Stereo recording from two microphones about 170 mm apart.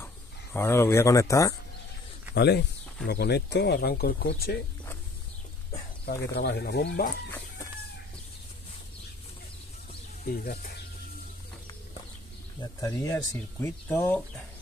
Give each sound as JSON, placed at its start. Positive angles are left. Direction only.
{"t": 0.0, "sound": "speech", "side_deg": 15}
{"t": 2.3, "sound": "speech", "side_deg": 75}
{"t": 6.0, "sound": "speech", "side_deg": 75}
{"t": 10.2, "sound": "speech", "side_deg": 60}
{"t": 12.8, "sound": "speech", "side_deg": 20}